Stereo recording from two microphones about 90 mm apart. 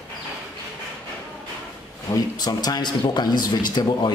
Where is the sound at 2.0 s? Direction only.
50° left (ahead or behind).